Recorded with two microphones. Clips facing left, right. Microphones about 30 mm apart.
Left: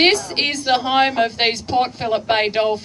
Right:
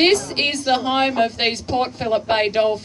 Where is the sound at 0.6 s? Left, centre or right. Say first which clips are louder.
Left 3 dB; centre.